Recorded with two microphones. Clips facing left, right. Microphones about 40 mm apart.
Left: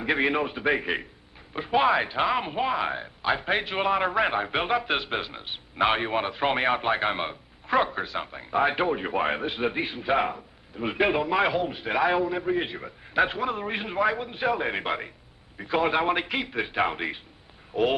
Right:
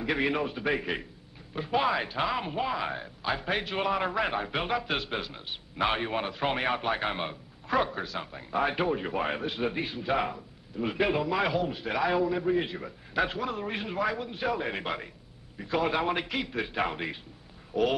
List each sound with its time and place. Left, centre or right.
0.0 s speech: left